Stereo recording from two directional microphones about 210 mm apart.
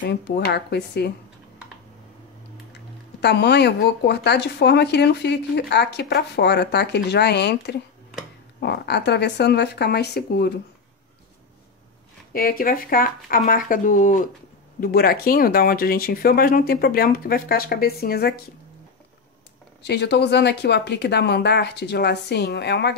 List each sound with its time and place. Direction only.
0.0 s speech: 50° left (ahead or behind)
3.2 s speech: 55° left (ahead or behind)
12.3 s speech: 45° left (ahead or behind)
19.8 s speech: 55° left (ahead or behind)